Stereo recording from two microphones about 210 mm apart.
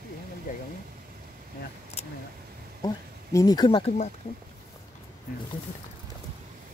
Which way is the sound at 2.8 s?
15° left (ahead or behind).